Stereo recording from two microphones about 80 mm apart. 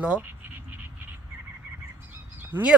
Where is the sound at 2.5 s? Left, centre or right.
Right.